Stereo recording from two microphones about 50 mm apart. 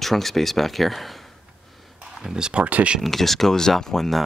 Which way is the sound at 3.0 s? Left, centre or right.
Centre.